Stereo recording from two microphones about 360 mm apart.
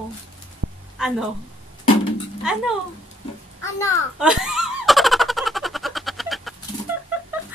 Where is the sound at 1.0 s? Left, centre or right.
Centre.